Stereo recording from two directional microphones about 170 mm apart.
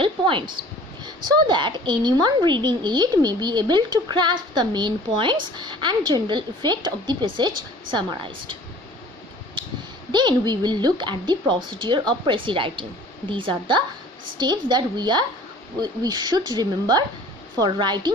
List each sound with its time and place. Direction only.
0.0 s a woman's voice: 30° right (ahead or behind)
10.1 s a woman's voice: 25° right (ahead or behind)